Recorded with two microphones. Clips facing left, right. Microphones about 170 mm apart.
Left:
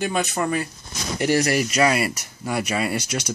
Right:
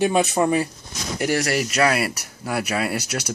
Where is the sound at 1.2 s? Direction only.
Centre (ahead or behind).